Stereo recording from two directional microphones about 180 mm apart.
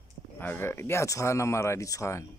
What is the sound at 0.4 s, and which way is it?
Speech, 10° left (ahead or behind).